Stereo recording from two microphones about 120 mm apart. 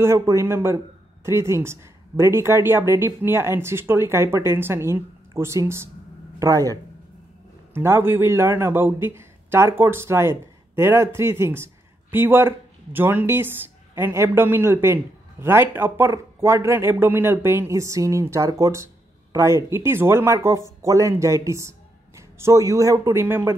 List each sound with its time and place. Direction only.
0.0 s speech: 25° right (ahead or behind)